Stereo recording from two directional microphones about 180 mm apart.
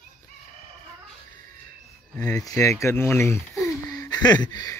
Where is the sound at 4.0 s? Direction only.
20° left (ahead or behind).